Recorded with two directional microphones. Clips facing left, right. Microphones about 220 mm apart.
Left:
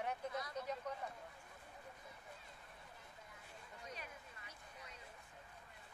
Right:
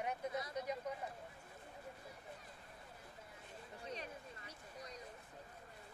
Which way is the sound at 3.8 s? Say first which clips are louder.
Right 5 dB; 30° right (ahead or behind).